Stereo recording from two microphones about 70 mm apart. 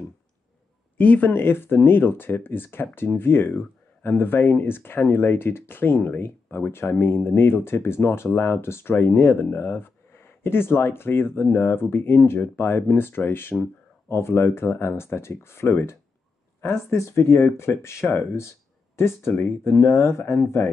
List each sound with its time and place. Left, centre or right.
0.9 s speech: left
18.9 s speech: left